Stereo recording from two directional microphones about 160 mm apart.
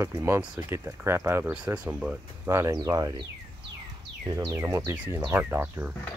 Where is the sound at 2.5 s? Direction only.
20° right (ahead or behind).